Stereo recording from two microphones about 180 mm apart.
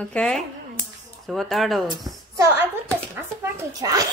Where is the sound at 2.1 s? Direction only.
20° right (ahead or behind).